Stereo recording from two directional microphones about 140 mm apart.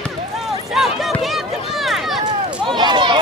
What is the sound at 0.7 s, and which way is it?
Run, centre (ahead or behind).